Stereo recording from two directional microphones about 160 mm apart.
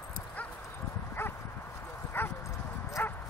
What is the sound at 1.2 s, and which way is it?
Dog, 15° left (ahead or behind).